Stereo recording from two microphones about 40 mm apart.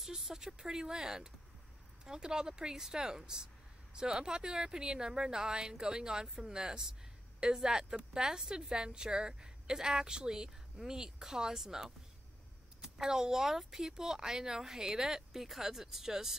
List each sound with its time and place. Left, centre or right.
0.0 s a woman's voice: centre